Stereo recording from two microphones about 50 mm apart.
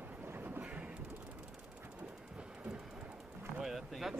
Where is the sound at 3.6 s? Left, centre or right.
Centre.